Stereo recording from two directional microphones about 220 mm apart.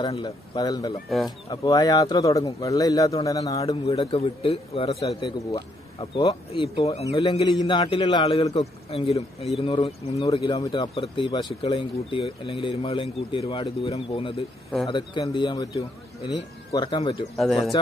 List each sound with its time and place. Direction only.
0.0 s a man's voice: 20° left (ahead or behind)
17.4 s speech: centre (ahead or behind)